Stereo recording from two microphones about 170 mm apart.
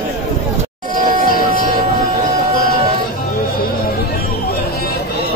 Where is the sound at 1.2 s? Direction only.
60° left (ahead or behind).